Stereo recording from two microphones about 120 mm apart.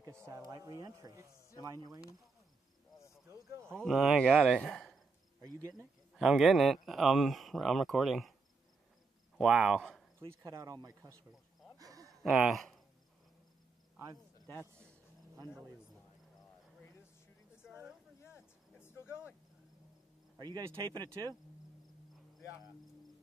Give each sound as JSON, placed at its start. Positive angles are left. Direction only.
{"t": 0.0, "sound": "speech", "side_deg": -25}
{"t": 3.3, "sound": "speech", "side_deg": -25}
{"t": 3.8, "sound": "speech", "side_deg": 0}
{"t": 5.4, "sound": "speech", "side_deg": -30}
{"t": 6.1, "sound": "speech", "side_deg": 0}
{"t": 9.4, "sound": "speech", "side_deg": -5}
{"t": 10.4, "sound": "speech", "side_deg": -30}
{"t": 11.8, "sound": "a sound", "side_deg": -30}
{"t": 12.2, "sound": "speech", "side_deg": 0}
{"t": 14.5, "sound": "a man's voice", "side_deg": -20}
{"t": 17.6, "sound": "a sound", "side_deg": -5}
{"t": 18.8, "sound": "vehicle", "side_deg": 20}
{"t": 20.3, "sound": "speech", "side_deg": -35}